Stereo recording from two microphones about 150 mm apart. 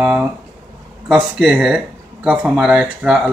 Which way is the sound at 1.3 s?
10° right (ahead or behind).